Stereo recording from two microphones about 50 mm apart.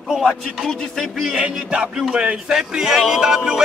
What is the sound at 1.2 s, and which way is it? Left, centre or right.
Speech, centre.